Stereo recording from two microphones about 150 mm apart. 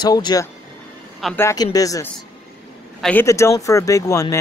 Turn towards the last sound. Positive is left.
turn(degrees=20)  # may be behind; listen again after turning